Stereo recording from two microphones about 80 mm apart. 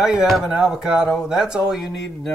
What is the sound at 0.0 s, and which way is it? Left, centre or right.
Speech, centre.